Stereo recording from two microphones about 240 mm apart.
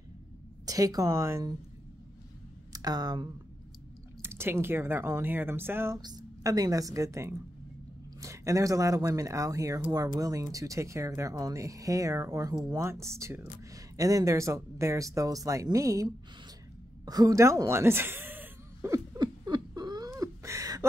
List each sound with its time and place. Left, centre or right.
0.7 s speech: centre
2.7 s speech: centre
17.0 s a sound: centre